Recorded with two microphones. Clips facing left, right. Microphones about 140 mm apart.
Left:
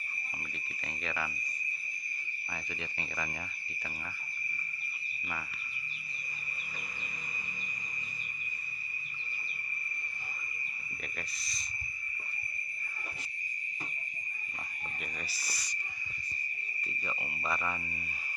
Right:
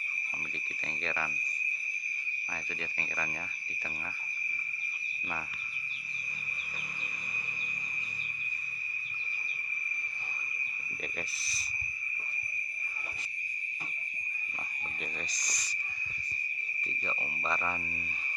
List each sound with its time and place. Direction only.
1.0 s speech: 5° left (ahead or behind)
15.3 s cricket: 10° left (ahead or behind)
17.1 s speech: centre (ahead or behind)